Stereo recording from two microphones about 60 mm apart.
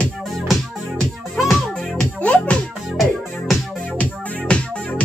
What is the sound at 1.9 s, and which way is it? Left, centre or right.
Music, centre.